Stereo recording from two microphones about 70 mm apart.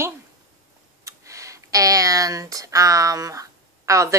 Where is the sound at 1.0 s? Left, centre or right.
Right.